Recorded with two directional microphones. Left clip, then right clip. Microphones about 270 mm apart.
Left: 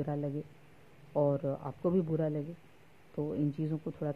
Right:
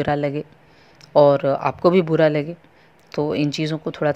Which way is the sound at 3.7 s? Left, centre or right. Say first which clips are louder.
Right 16 dB; right.